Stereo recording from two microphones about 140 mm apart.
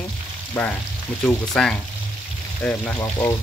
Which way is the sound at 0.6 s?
10° left (ahead or behind).